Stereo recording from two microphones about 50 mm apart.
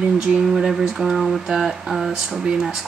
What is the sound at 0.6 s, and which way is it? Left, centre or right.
Speech, centre.